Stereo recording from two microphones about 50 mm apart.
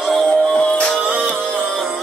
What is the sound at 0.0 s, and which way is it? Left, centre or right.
Music, centre.